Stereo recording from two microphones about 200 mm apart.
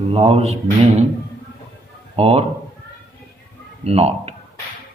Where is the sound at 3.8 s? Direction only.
30° right (ahead or behind).